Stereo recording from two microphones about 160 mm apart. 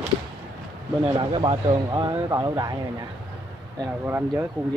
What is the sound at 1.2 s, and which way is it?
Speech, 30° right (ahead or behind).